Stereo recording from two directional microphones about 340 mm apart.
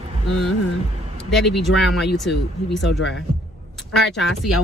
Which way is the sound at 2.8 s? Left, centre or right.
Left.